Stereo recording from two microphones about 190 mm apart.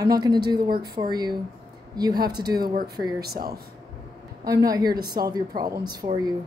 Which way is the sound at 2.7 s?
55° right (ahead or behind).